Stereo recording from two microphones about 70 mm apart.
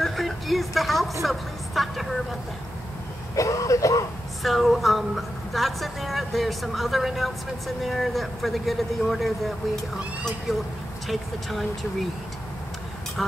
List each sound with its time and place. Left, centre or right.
0.0 s a sound: centre
1.2 s vehicle: centre
3.3 s speech: left
4.4 s a woman's voice: centre
10.5 s a woman's voice: centre